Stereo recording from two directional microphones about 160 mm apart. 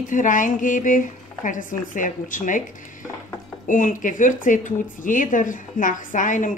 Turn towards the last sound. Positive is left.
turn(degrees=55)  # may be behind; listen again after turning